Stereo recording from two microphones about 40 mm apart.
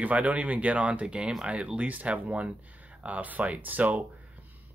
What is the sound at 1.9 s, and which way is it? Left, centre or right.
Speech, right.